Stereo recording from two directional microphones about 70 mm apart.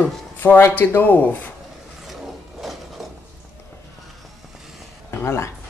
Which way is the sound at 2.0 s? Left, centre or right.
Centre.